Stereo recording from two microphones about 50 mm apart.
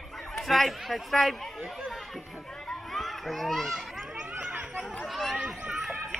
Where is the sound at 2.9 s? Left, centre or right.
Centre.